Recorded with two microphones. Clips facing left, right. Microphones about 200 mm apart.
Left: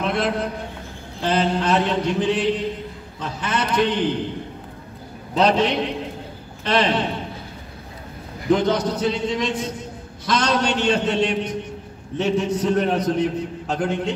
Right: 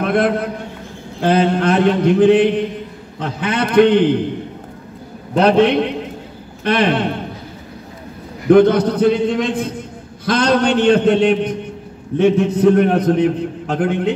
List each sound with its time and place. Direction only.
0.0 s a man's voice: 55° right (ahead or behind)
5.3 s a man's voice: 55° right (ahead or behind)
8.5 s a man's voice: 55° right (ahead or behind)